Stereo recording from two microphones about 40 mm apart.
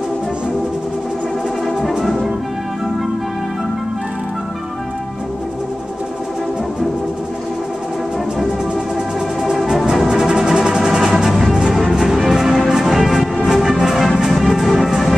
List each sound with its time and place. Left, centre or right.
1.7 s music: centre
10.0 s music: centre